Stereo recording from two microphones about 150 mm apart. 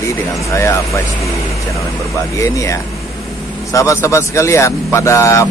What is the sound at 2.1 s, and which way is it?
A man's voice, 20° left (ahead or behind).